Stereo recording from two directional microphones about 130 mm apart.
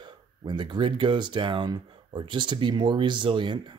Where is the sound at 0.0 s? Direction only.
35° right (ahead or behind).